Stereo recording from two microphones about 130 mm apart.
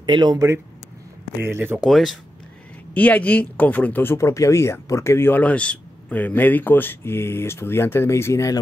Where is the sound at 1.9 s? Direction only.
Centre (ahead or behind).